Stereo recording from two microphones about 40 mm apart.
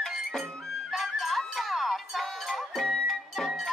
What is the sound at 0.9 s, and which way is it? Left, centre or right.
Music, centre.